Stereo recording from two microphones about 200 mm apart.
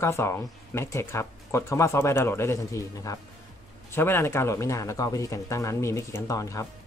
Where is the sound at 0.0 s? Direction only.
15° left (ahead or behind).